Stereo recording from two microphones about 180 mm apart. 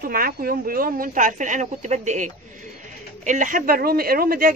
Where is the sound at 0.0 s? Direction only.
55° right (ahead or behind).